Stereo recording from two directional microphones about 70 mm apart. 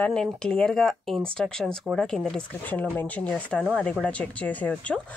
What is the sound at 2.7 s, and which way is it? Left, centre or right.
Speech, left.